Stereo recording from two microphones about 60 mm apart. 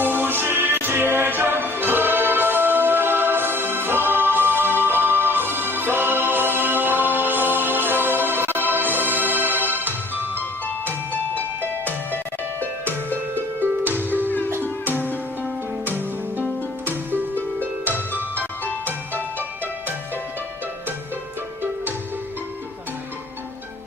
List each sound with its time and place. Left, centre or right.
0.0 s music: right
12.5 s music: right
17.6 s music: right